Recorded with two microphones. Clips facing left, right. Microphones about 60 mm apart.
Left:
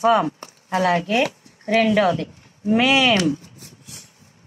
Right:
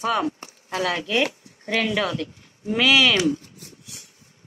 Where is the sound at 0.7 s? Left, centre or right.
Left.